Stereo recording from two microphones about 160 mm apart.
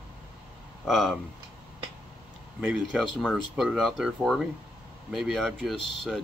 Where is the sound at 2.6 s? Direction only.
5° right (ahead or behind).